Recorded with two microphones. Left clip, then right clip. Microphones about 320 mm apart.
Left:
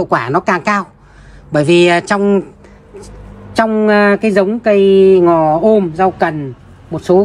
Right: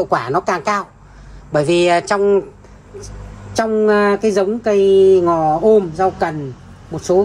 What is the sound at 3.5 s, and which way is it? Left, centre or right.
Speech, left.